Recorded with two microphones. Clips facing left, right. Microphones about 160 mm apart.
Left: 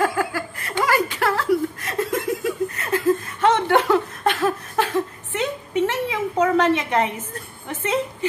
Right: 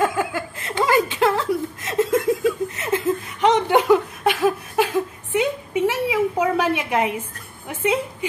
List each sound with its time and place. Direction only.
0.0 s chuckle: 20° right (ahead or behind)